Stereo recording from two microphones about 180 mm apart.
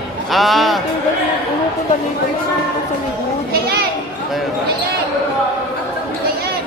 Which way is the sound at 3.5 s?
60° right (ahead or behind).